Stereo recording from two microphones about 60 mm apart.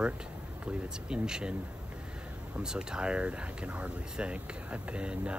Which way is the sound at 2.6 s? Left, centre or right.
Centre.